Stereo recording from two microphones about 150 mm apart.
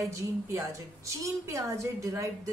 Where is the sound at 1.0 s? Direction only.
20° right (ahead or behind).